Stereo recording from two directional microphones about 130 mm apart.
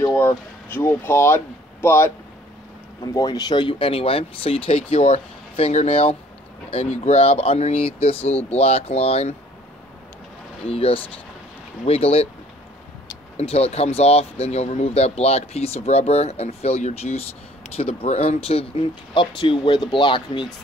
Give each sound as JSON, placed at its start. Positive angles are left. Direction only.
{"t": 0.0, "sound": "speech", "side_deg": 20}
{"t": 10.7, "sound": "speech", "side_deg": 45}
{"t": 13.4, "sound": "speech", "side_deg": 50}